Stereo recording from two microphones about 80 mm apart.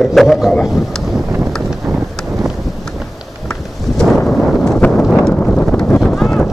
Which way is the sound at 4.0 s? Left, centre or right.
Centre.